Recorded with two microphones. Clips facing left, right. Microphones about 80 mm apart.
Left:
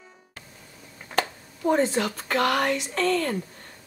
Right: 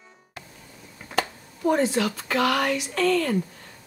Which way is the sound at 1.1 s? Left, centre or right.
Centre.